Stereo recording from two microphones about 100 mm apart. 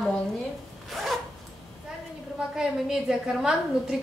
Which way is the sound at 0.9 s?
Centre (ahead or behind).